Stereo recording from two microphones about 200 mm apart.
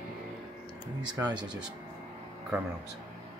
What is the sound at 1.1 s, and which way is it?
Speech, 20° right (ahead or behind).